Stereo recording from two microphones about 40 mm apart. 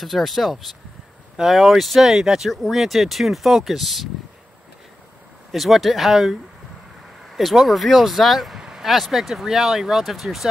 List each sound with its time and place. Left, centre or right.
0.0 s speech: centre
1.3 s speech: centre
1.6 s speech: centre
2.5 s speech: centre
5.5 s speech: centre
7.3 s speech: centre
8.5 s vehicle: centre
8.8 s speech: centre